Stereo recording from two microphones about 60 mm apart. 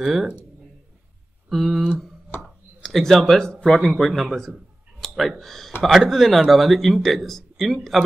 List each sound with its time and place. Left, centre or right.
0.0 s speech: centre
1.5 s speech: centre
2.3 s a sound: left
2.8 s speech: centre
5.0 s a sound: centre
5.4 s speech: centre